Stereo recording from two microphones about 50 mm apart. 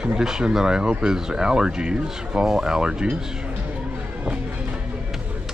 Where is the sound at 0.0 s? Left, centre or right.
Centre.